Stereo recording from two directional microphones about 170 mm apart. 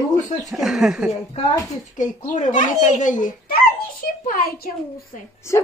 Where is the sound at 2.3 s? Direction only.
45° left (ahead or behind).